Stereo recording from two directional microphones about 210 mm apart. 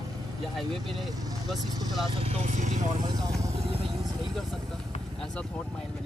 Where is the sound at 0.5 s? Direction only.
Centre (ahead or behind).